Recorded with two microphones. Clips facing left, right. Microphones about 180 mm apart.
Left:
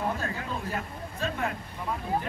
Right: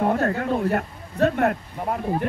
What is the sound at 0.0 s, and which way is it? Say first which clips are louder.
Speech: right 10 dB; 65° right (ahead or behind).